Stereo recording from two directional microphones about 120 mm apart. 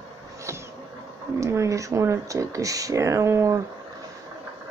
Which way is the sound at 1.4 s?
25° right (ahead or behind).